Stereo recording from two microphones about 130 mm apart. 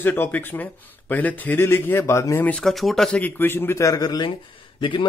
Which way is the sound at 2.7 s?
Centre (ahead or behind).